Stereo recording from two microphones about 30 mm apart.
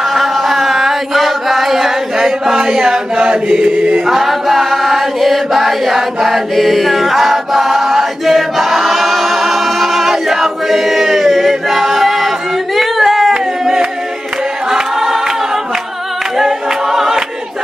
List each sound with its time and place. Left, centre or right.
0.1 s chant: centre
3.2 s mantra: right
3.6 s chant: right
4.0 s chant: centre
11.1 s choir: centre
14.7 s choir: centre
16.3 s a capella: centre